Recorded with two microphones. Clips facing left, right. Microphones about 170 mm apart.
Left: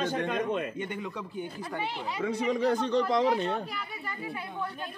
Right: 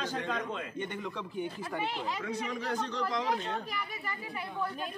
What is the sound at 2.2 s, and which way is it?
Speech, 65° left (ahead or behind).